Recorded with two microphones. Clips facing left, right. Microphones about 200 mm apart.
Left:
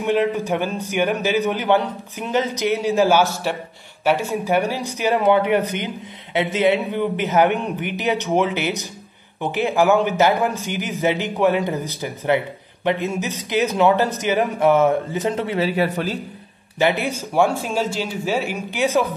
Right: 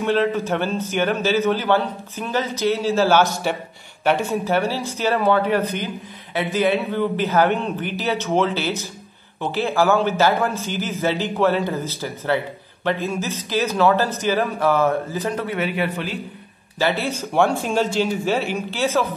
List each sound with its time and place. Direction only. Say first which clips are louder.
0.0 s a man's voice: even; 15° left (ahead or behind); by 16.2 s 40° left (ahead or behind)
16.7 s a man's voice: left 2 dB; 15° left (ahead or behind)
17.3 s a man's voice: even; 5° left (ahead or behind)